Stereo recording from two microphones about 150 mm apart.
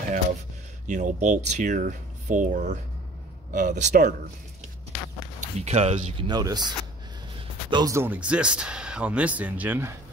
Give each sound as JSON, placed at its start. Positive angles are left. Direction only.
{"t": 0.8, "sound": "speech", "side_deg": -55}
{"t": 5.4, "sound": "speech", "side_deg": -45}
{"t": 6.2, "sound": "speech", "side_deg": -25}
{"t": 7.7, "sound": "speech", "side_deg": -20}